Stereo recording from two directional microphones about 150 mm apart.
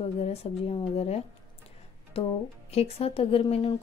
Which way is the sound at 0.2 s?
45° left (ahead or behind).